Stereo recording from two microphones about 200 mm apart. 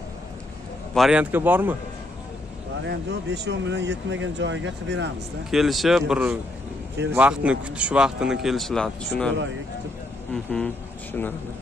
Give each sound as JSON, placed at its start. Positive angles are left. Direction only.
{"t": 0.9, "sound": "speech", "side_deg": -5}
{"t": 2.9, "sound": "speech", "side_deg": -60}
{"t": 5.5, "sound": "speech", "side_deg": 0}
{"t": 10.3, "sound": "speech", "side_deg": 5}